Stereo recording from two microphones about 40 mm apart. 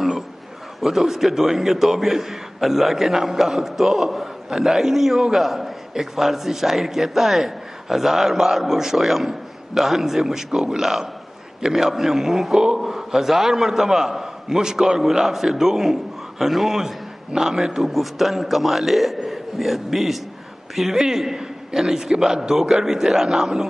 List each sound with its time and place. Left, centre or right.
0.8 s a man's voice: centre